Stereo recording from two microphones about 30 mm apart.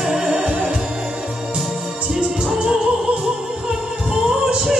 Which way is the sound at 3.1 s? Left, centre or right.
Right.